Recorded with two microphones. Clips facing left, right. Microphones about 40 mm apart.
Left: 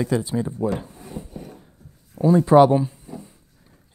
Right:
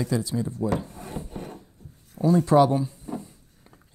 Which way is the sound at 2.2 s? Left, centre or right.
Left.